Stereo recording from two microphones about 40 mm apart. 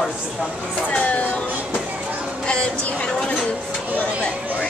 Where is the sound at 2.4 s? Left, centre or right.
Left.